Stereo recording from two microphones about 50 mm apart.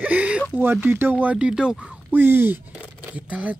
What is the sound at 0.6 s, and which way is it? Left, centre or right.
Speech, right.